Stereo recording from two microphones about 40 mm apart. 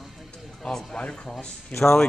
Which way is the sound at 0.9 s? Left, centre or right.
Left.